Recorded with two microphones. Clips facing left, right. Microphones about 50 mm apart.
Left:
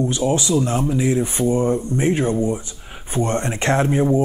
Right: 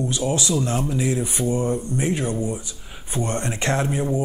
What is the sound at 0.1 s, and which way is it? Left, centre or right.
Speech, left.